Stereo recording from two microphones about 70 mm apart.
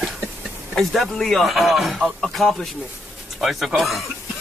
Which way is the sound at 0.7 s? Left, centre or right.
Centre.